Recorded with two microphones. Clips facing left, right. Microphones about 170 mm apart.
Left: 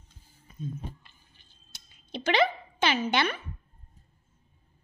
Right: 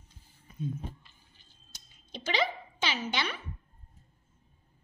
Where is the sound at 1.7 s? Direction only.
65° left (ahead or behind).